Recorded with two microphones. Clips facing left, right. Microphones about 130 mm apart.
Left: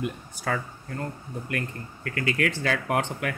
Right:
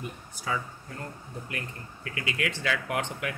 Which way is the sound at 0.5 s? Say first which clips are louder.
Left 3 dB; 55° left (ahead or behind).